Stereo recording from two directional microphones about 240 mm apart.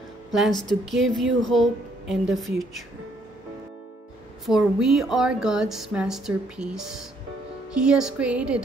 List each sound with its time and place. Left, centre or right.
0.5 s speech: centre
0.8 s speech: centre
4.5 s speech: centre